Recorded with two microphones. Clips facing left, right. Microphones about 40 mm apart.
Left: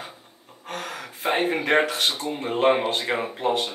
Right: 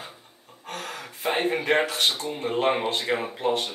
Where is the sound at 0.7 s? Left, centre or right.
Centre.